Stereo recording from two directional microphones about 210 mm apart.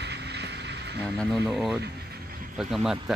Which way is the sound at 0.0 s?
55° right (ahead or behind).